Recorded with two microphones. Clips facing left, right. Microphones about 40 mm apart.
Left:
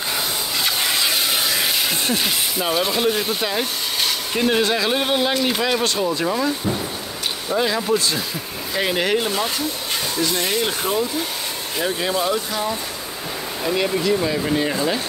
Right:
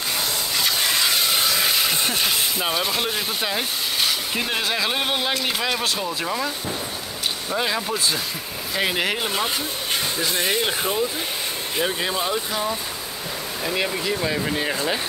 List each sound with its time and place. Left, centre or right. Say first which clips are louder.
0.6 s a sound: left 1 dB; centre
6.0 s speech: left 5 dB; centre
7.5 s speech: left 6 dB; centre
10.1 s speech: left 3 dB; right; by 12.7 s centre
14.0 s speech: left 4 dB; centre